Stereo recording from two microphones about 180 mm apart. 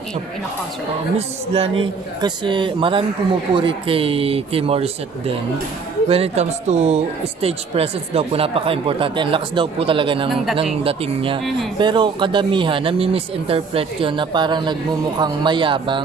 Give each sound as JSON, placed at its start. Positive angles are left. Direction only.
{"t": 1.1, "sound": "speech", "side_deg": -30}
{"t": 10.3, "sound": "speech", "side_deg": 0}
{"t": 10.6, "sound": "speech", "side_deg": -30}